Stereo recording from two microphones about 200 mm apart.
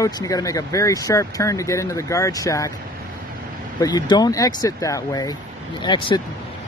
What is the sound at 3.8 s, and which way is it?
Speech, 20° left (ahead or behind).